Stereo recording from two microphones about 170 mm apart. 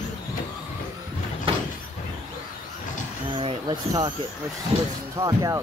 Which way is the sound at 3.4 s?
30° right (ahead or behind).